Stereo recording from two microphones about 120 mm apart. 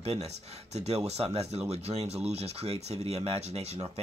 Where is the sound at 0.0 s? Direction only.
60° right (ahead or behind).